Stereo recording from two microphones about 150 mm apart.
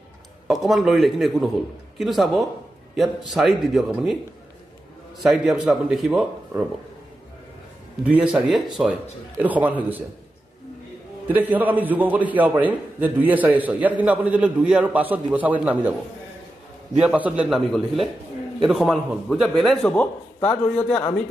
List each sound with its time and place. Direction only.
0.5 s a man's voice: centre (ahead or behind)
5.2 s a man's voice: 5° right (ahead or behind)
8.0 s a man's voice: 5° right (ahead or behind)
11.2 s a man's voice: 10° right (ahead or behind)
17.0 s a man's voice: 10° right (ahead or behind); by 21.0 s 5° left (ahead or behind)